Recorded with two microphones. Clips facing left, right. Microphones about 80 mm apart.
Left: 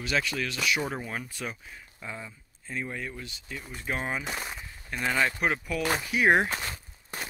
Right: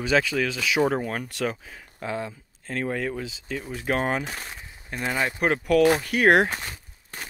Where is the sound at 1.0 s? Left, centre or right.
Right.